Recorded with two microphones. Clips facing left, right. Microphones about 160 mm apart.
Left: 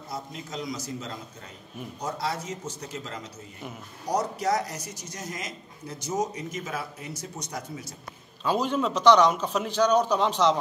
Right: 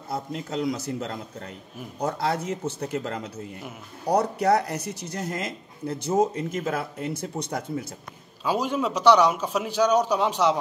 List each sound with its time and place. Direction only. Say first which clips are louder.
0.1 s speech: right 6 dB; 60° right (ahead or behind)
8.5 s a man's voice: even; 10° right (ahead or behind)